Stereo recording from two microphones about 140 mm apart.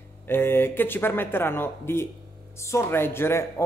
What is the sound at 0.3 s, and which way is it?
Speech, 15° left (ahead or behind).